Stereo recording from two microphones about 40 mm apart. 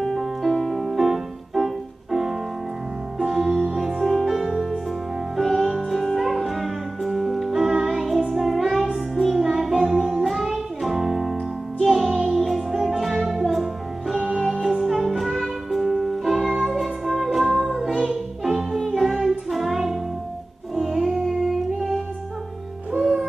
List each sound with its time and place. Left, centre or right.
0.0 s music: centre